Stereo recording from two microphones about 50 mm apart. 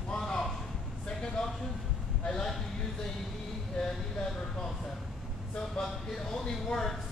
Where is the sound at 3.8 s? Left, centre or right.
Centre.